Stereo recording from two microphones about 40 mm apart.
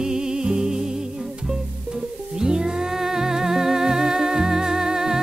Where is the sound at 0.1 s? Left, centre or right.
Centre.